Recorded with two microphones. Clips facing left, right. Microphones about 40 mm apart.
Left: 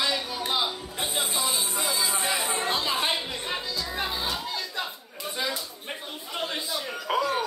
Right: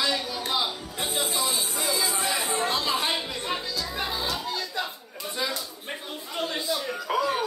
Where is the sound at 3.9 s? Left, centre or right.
Left.